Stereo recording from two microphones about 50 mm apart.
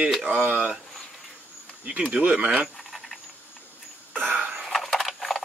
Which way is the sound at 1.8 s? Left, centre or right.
Right.